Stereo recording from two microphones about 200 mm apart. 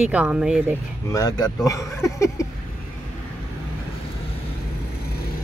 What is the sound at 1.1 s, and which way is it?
Speech, 20° left (ahead or behind).